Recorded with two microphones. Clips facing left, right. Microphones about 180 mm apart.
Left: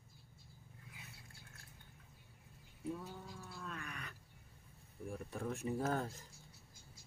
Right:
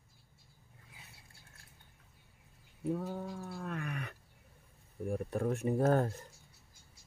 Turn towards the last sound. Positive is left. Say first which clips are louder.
# right 9 dB
turn(degrees=-60)  # may be behind; listen again after turning